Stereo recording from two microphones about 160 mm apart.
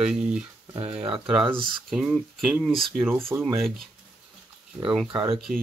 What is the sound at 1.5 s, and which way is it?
Speech, 65° right (ahead or behind).